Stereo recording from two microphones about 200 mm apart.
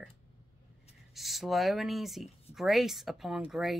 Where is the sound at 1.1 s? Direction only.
Centre (ahead or behind).